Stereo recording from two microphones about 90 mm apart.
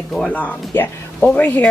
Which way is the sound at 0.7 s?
25° left (ahead or behind).